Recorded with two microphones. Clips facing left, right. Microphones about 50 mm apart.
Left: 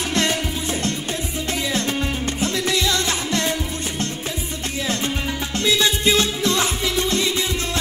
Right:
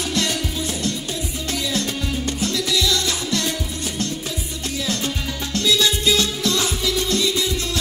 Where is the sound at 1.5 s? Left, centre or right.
Left.